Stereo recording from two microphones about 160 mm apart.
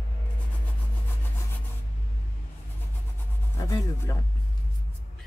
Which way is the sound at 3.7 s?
20° left (ahead or behind).